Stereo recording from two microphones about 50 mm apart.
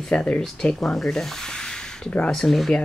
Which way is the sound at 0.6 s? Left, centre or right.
Centre.